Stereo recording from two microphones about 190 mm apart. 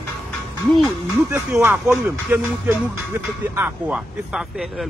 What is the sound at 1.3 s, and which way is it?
A man's voice, 10° right (ahead or behind).